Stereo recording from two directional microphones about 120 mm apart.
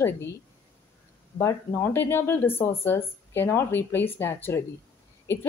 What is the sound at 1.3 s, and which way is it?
A woman's voice, 20° left (ahead or behind).